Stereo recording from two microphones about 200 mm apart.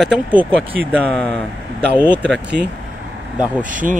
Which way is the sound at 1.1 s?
5° left (ahead or behind).